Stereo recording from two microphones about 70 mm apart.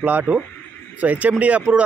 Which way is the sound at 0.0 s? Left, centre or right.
Right.